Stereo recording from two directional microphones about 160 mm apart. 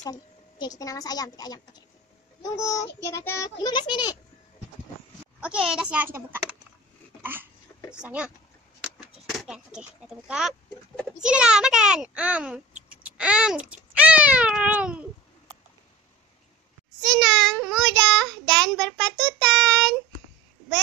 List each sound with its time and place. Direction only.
0.0 s a woman's voice: 25° left (ahead or behind)
5.7 s a child's voice: 5° right (ahead or behind)
7.9 s a child's voice: 5° right (ahead or behind)
17.0 s child singing: centre (ahead or behind)